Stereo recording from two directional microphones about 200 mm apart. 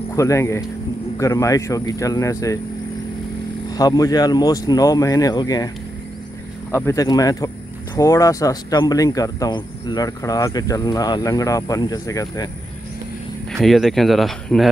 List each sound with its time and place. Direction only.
0.1 s speech: 15° left (ahead or behind)
3.7 s speech: 20° left (ahead or behind)
6.7 s speech: 15° left (ahead or behind)
13.5 s speech: centre (ahead or behind)